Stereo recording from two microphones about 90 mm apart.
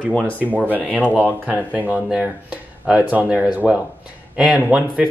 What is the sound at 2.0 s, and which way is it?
Speech, 10° right (ahead or behind).